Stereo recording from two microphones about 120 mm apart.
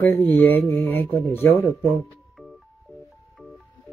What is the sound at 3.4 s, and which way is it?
Music, 15° left (ahead or behind).